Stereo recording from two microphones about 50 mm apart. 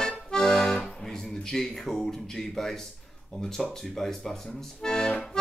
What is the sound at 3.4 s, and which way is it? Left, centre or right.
Speech, centre.